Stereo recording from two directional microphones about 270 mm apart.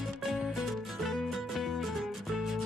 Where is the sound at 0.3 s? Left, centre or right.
Centre.